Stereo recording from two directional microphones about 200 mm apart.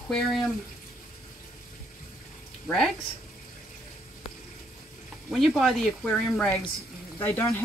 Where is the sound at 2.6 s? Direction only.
5° left (ahead or behind).